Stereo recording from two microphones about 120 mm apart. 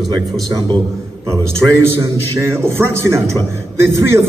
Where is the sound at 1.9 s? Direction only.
20° right (ahead or behind).